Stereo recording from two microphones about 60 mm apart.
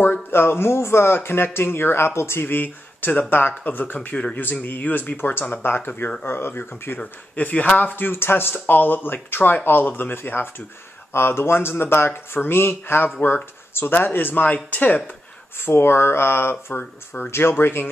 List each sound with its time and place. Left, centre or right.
0.0 s speech: left
7.0 s speech: left
15.6 s speech: left